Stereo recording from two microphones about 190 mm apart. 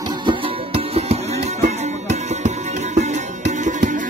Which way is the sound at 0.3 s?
30° right (ahead or behind).